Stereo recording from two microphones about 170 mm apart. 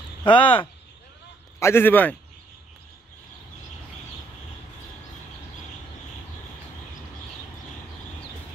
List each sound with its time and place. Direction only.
0.2 s speech: 30° left (ahead or behind)
1.6 s a man's voice: 15° left (ahead or behind)